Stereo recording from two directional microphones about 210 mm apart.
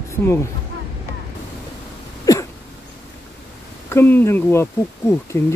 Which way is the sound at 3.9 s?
10° left (ahead or behind).